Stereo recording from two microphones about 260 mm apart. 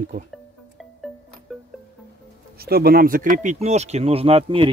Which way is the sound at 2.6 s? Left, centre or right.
Right.